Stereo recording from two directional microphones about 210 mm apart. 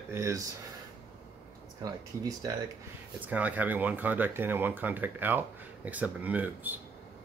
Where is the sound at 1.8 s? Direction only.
15° right (ahead or behind).